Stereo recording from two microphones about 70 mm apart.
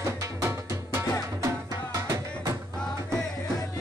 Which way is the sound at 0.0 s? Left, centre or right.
Right.